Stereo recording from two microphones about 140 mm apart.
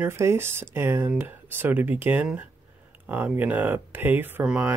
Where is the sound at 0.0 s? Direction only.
20° right (ahead or behind).